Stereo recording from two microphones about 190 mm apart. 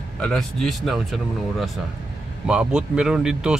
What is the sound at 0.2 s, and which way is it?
A man's voice, centre (ahead or behind).